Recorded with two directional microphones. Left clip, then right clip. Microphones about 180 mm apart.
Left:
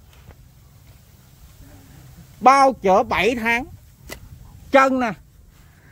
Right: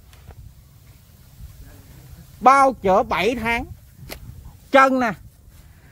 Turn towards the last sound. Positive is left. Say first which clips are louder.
# right 1 dB
turn(degrees=0)  # may be behind; listen again after turning